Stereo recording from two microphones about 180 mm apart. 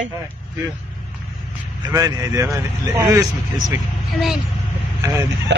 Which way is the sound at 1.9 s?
15° right (ahead or behind).